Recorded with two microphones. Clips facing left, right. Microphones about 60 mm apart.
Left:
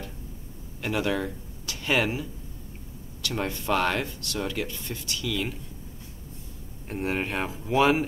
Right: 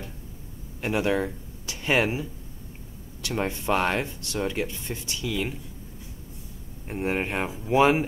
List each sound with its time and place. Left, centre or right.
0.7 s speech: right
6.9 s speech: centre